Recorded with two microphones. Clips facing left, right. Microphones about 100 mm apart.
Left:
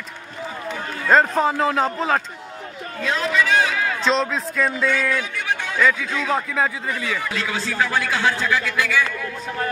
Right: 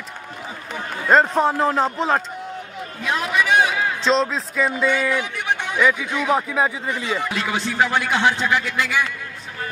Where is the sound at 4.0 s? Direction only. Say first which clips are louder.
Right 2 dB; centre (ahead or behind).